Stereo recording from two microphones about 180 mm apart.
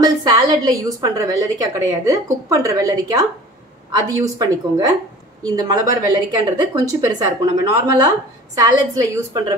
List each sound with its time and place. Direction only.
0.0 s a woman's voice: 20° right (ahead or behind)